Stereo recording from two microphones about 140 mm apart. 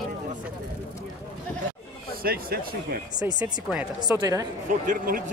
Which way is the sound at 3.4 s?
10° right (ahead or behind).